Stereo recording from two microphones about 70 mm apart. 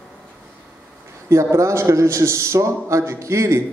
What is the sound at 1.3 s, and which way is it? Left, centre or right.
Speech, right.